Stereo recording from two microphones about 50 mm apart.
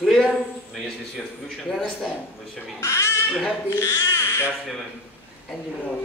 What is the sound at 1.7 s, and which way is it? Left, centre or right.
Speech, centre.